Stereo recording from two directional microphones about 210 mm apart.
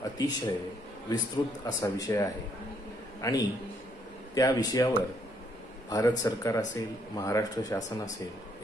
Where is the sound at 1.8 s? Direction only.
15° left (ahead or behind).